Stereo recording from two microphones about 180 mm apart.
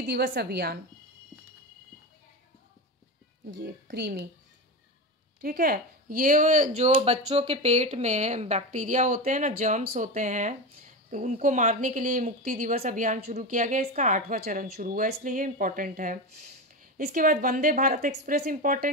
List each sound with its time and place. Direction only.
0.0 s a woman's voice: 60° right (ahead or behind)
3.9 s speech: 65° right (ahead or behind)
5.4 s speech: 55° right (ahead or behind)
6.9 s speech: 35° right (ahead or behind)